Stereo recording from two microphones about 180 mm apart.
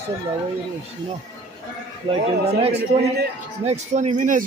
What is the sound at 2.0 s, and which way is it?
A man's voice, 35° right (ahead or behind).